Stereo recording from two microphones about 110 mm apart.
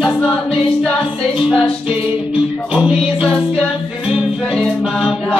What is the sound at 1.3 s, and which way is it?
Music, 50° left (ahead or behind).